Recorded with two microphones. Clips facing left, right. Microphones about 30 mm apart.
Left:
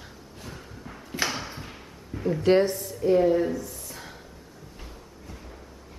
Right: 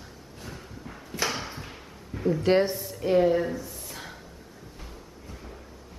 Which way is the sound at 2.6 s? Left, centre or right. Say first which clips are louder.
Left 2 dB; centre.